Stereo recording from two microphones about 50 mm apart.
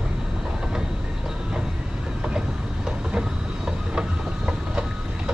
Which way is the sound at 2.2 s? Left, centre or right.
Centre.